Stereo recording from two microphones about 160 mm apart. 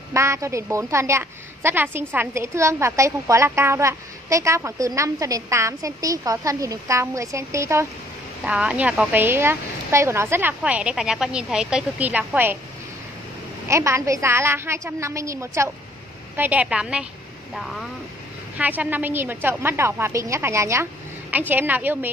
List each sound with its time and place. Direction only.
0.1 s a woman's voice: 20° right (ahead or behind)
8.5 s a woman's voice: 5° right (ahead or behind)
13.7 s a woman's voice: 15° right (ahead or behind); by 17.8 s centre (ahead or behind)
18.6 s a woman's voice: 10° right (ahead or behind)